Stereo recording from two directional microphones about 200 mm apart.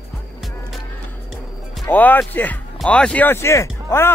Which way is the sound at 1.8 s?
10° left (ahead or behind).